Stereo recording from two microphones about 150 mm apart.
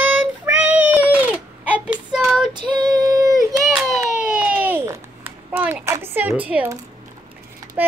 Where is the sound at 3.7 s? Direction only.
5° right (ahead or behind).